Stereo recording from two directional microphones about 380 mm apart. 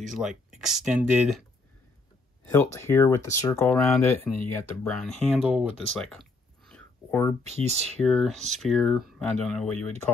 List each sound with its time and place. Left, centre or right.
0.1 s speech: centre
2.5 s speech: centre
7.4 s speech: centre
8.0 s speech: centre